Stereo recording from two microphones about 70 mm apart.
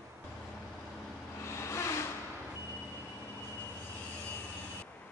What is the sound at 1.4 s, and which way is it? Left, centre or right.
Vehicle, left.